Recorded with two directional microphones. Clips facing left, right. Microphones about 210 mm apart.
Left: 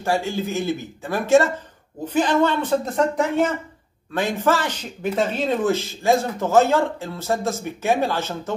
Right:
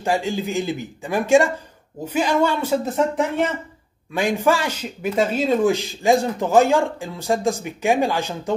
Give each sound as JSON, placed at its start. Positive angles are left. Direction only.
{"t": 0.0, "sound": "speech", "side_deg": -15}
{"t": 4.1, "sound": "speech", "side_deg": -10}